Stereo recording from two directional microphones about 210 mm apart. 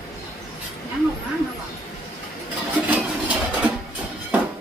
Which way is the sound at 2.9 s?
5° right (ahead or behind).